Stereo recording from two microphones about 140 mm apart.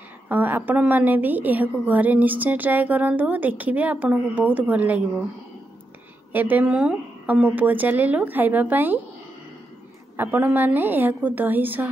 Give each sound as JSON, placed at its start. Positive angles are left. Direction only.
{"t": 0.3, "sound": "a woman's voice", "side_deg": -15}
{"t": 6.3, "sound": "a woman's voice", "side_deg": -10}
{"t": 10.1, "sound": "a woman's voice", "side_deg": -15}